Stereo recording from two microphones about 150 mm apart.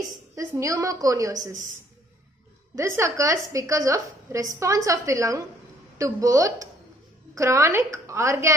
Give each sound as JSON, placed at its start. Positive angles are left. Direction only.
{"t": 0.4, "sound": "a woman's voice", "side_deg": -20}
{"t": 2.7, "sound": "a woman's voice", "side_deg": -20}